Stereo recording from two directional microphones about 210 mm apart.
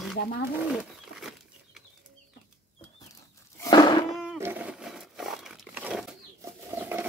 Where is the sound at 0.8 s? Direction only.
Centre (ahead or behind).